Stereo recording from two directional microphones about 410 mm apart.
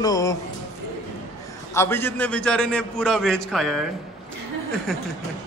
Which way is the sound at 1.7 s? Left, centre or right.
Centre.